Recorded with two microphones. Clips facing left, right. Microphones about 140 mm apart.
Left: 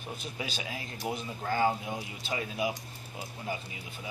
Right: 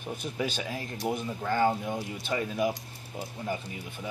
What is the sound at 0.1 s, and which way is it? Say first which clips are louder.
Speech: right 6 dB; 50° right (ahead or behind).